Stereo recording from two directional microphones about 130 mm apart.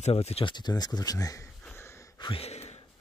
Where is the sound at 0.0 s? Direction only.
55° left (ahead or behind).